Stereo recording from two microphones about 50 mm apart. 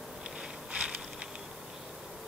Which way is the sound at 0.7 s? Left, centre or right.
Centre.